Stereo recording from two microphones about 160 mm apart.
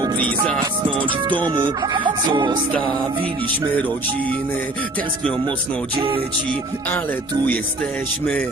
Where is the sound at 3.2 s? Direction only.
35° right (ahead or behind).